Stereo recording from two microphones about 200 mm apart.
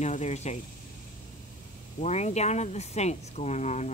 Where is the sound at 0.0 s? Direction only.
35° left (ahead or behind).